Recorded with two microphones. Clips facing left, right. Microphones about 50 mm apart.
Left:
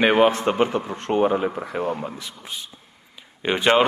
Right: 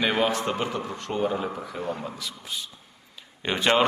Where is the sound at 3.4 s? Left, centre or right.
Centre.